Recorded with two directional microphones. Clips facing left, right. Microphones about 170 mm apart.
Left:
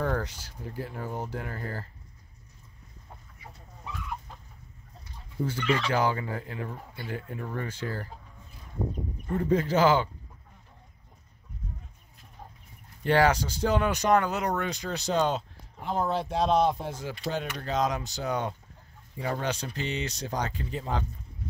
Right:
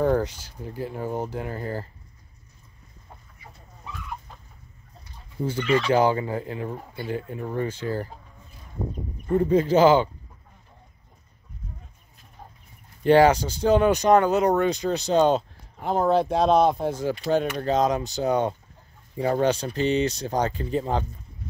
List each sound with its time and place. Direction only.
0.0 s speech: 20° right (ahead or behind)
5.5 s speech: 20° right (ahead or behind)
9.3 s speech: 25° right (ahead or behind)
13.0 s speech: 20° right (ahead or behind)
15.8 s speech: 55° right (ahead or behind); by 18.5 s 25° right (ahead or behind)
19.1 s speech: 35° right (ahead or behind)